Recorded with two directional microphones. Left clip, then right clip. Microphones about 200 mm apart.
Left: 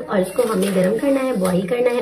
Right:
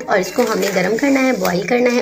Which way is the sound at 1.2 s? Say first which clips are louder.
Right 3 dB; 25° right (ahead or behind).